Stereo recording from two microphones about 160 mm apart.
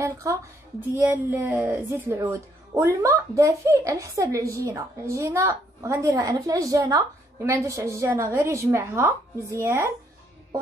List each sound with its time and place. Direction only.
0.0 s a woman's voice: 20° right (ahead or behind)